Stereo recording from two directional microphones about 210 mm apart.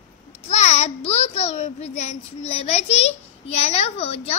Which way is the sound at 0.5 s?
30° left (ahead or behind).